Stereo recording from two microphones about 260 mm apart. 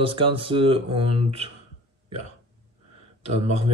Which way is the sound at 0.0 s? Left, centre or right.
Centre.